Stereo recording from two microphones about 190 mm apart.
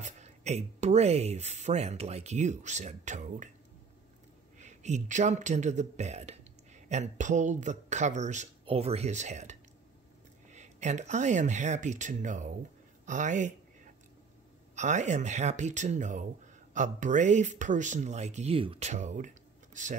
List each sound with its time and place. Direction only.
0.0 s speech: 35° right (ahead or behind)
4.6 s speech: 40° right (ahead or behind)
14.8 s speech: 40° right (ahead or behind)